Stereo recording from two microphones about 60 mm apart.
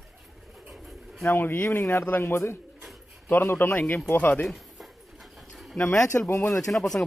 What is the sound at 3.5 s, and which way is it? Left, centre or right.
Speech, left.